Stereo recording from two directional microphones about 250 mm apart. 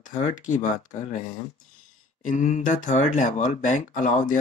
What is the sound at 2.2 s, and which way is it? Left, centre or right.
Speech, left.